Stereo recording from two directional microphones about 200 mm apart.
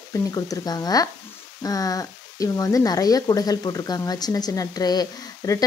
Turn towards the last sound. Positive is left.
turn(degrees=15)  # may be behind; listen again after turning